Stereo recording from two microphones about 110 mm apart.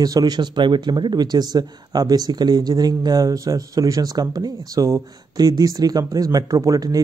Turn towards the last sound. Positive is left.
turn(degrees=-35)  # may be behind; listen again after turning